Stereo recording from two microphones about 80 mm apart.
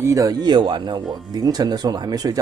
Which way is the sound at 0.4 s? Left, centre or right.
Right.